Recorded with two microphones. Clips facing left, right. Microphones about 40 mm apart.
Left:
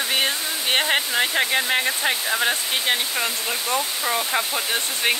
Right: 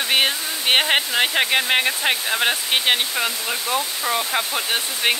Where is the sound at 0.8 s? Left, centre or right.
Centre.